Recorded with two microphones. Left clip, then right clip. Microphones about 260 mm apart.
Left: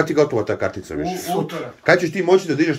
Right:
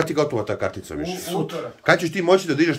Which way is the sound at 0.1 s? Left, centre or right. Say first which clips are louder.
Left 4 dB; centre.